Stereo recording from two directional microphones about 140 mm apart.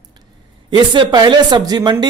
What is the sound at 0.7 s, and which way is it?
A man's voice, 35° right (ahead or behind).